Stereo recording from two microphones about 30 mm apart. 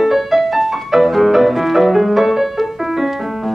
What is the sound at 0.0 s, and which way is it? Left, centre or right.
Music, centre.